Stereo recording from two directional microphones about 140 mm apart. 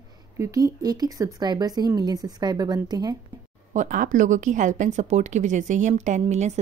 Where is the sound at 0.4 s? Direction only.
25° right (ahead or behind).